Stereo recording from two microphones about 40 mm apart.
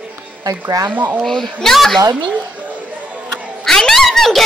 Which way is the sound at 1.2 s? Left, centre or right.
Centre.